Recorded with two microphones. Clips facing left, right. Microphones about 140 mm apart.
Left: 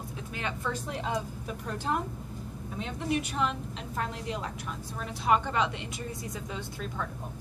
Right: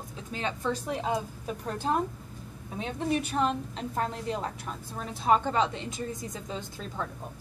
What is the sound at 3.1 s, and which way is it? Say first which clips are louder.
A woman's voice: right 2 dB; 40° right (ahead or behind).